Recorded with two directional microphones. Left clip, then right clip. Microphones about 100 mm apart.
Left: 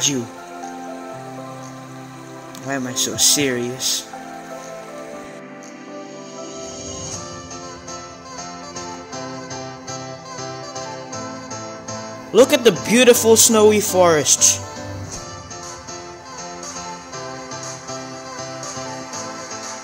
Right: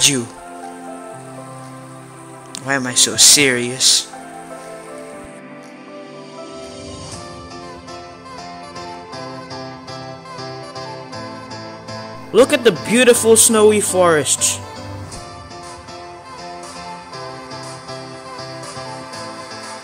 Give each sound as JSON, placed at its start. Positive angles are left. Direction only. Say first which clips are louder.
{"t": 2.6, "sound": "speech", "louder": "right 6 dB", "side_deg": -15}
{"t": 8.7, "sound": "music", "louder": "even", "side_deg": -45}
{"t": 12.3, "sound": "speech", "louder": "right 1 dB", "side_deg": -10}
{"t": 18.6, "sound": "music", "louder": "even", "side_deg": -50}